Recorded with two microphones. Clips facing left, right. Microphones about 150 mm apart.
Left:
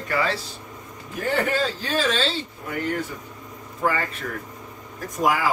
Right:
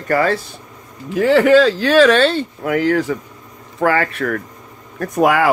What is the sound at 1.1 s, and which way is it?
Speech, 90° right.